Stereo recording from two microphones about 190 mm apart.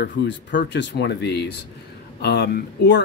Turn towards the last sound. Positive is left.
turn(degrees=65)  # may be behind; listen again after turning